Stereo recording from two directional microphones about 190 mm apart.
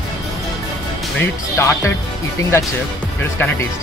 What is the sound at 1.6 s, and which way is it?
Speech, 15° left (ahead or behind).